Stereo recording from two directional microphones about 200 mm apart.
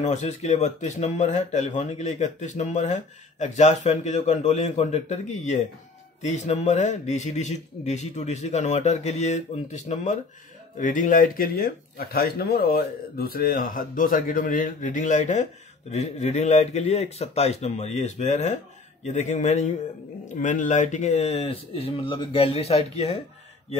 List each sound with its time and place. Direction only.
0.0 s a man's voice: 35° left (ahead or behind)